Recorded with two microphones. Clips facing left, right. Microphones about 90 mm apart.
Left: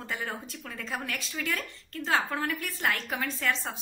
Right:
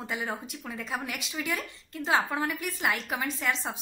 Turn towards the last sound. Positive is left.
turn(degrees=-15)  # may be behind; listen again after turning